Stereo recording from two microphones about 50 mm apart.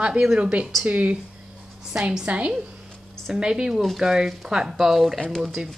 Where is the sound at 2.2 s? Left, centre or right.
Right.